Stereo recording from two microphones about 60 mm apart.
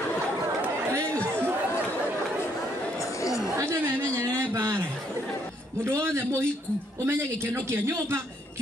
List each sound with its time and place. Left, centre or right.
3.2 s chatter: left
3.5 s chatter: right
3.8 s a sound: right
5.9 s a man's voice: right